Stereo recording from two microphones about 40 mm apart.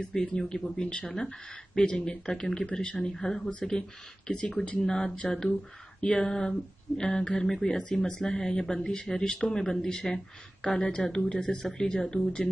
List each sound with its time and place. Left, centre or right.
0.0 s speech: left
3.5 s speech: left